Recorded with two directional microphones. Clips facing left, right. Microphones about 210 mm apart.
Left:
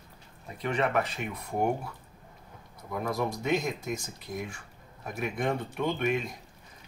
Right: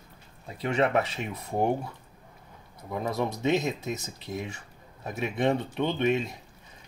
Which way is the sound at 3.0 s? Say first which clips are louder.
Right 3 dB; 25° right (ahead or behind).